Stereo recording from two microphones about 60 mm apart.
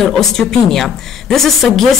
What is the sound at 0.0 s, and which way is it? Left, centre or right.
A woman's voice, centre.